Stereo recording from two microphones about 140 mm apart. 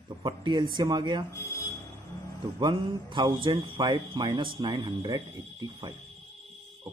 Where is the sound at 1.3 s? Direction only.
20° left (ahead or behind).